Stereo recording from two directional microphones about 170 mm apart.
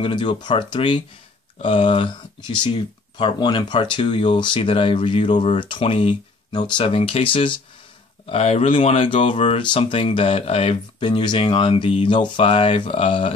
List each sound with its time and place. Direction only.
0.0 s speech: 30° left (ahead or behind)